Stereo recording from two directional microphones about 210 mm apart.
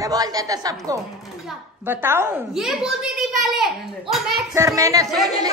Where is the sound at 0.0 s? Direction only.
15° right (ahead or behind); by 4.5 s centre (ahead or behind).